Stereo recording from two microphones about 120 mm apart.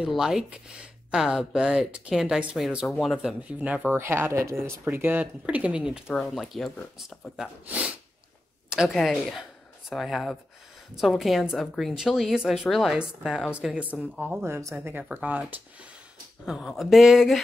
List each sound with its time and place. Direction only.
0.0 s a woman's voice: 5° right (ahead or behind)
8.6 s a sound: 5° right (ahead or behind)
8.9 s a woman's voice: centre (ahead or behind)
14.4 s speech: 25° right (ahead or behind)
16.4 s a woman's voice: 5° right (ahead or behind)